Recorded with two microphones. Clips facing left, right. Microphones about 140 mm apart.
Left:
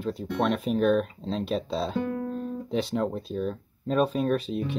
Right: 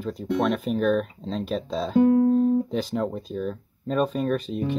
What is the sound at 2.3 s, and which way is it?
Music, 40° right (ahead or behind).